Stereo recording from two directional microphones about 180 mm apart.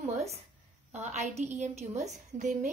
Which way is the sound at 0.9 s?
40° right (ahead or behind).